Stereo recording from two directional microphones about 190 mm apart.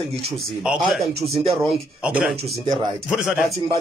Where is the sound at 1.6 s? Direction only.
5° right (ahead or behind).